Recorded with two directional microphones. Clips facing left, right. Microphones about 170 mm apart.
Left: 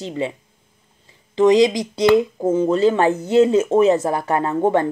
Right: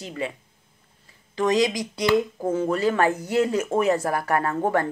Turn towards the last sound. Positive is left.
turn(degrees=25)  # may be behind; listen again after turning